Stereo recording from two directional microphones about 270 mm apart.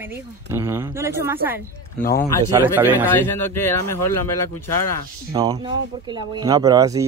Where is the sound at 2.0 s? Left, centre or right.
Left.